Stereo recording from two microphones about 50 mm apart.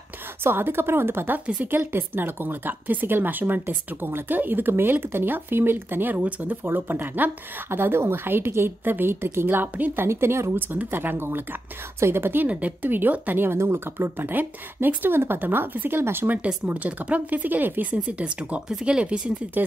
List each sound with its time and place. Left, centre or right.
0.4 s a woman's voice: right
8.8 s speech: right
9.9 s speech: right
10.7 s speech: right
12.4 s a woman's voice: right
13.4 s speech: right
13.9 s speech: right
16.0 s speech: right
16.6 s a woman's voice: right
17.9 s speech: right